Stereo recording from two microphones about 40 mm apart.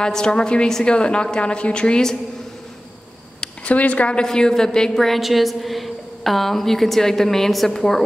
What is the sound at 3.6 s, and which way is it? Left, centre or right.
Speech, left.